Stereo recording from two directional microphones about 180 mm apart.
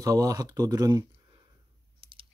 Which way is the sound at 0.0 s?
20° right (ahead or behind).